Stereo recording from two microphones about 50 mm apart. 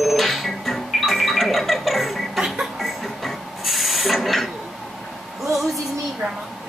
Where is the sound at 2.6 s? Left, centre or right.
Centre.